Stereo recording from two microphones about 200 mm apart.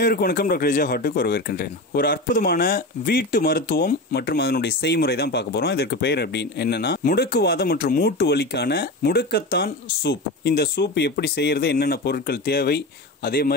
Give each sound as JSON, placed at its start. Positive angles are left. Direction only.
{"t": 0.0, "sound": "speech", "side_deg": 50}